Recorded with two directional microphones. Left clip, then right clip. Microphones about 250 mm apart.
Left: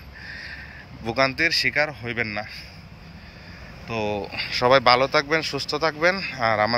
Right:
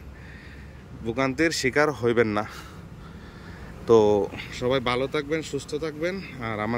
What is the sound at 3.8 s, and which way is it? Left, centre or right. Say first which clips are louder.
Speech: right 10 dB; right.